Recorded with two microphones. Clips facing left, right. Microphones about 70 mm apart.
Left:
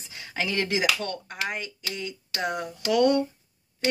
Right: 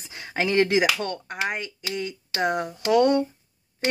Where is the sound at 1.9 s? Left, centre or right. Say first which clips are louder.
Right 6 dB; right.